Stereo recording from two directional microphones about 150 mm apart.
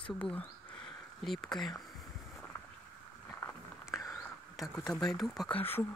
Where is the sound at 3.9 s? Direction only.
Centre (ahead or behind).